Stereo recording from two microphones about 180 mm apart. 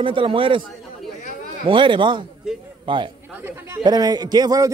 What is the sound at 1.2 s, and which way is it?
Chatter, 45° left (ahead or behind).